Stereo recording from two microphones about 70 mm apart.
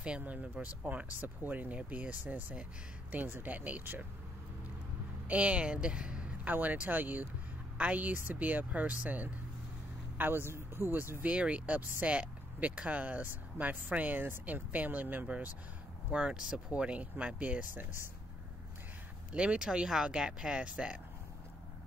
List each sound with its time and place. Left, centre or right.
0.0 s speech: centre
5.3 s speech: centre
11.3 s speech: centre
19.3 s speech: centre